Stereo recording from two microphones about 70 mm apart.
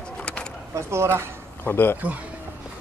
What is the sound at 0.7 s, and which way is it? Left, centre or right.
Speech, right.